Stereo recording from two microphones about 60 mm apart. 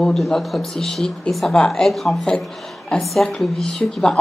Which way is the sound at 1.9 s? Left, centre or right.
Centre.